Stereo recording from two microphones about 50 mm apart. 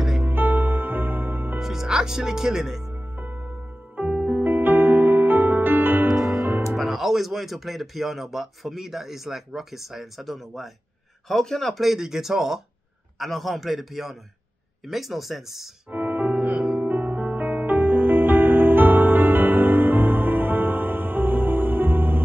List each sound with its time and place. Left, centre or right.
0.2 s music: right
1.6 s speech: centre
2.9 s music: right
6.8 s speech: centre
11.8 s speech: centre
15.9 s music: right
16.4 s music: centre
16.8 s music: right